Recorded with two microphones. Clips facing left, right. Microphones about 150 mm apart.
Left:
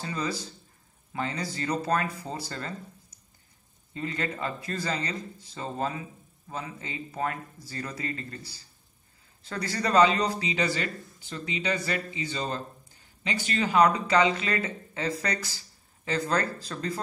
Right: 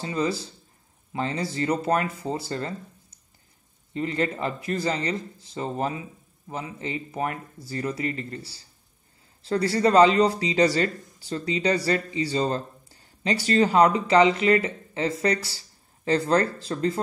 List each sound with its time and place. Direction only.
0.0 s speech: 25° right (ahead or behind)
3.9 s speech: 25° right (ahead or behind)